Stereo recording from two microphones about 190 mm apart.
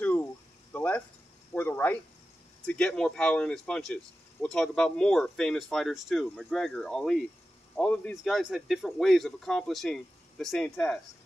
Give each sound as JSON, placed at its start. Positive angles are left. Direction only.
{"t": 0.0, "sound": "cricket", "side_deg": 10}
{"t": 0.7, "sound": "a sound", "side_deg": 10}
{"t": 1.5, "sound": "speech", "side_deg": 10}